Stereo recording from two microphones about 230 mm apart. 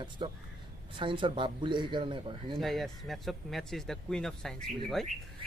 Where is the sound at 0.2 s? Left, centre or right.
Right.